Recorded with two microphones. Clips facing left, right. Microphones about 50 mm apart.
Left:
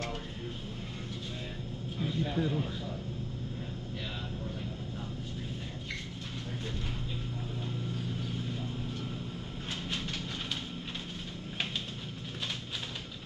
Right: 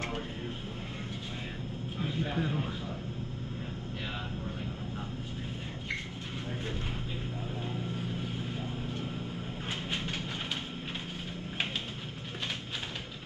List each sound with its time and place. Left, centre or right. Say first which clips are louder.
2.0 s vehicle: left 1 dB; right
7.9 s vehicle: right 1 dB; right
9.8 s train: right 1 dB; right